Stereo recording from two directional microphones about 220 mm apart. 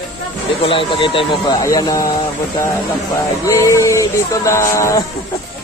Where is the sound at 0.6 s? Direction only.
25° left (ahead or behind).